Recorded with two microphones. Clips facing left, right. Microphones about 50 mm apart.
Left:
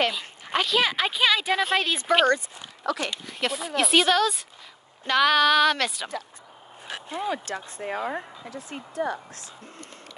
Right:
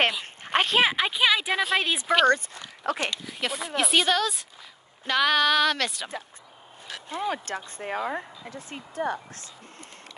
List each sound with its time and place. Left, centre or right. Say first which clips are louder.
0.5 s speech: right 1 dB; right
0.9 s a woman's voice: even; centre
2.2 s speech: right 1 dB; right
2.8 s speech: even; right
3.3 s speech: left 2 dB; centre
7.2 s speech: even; right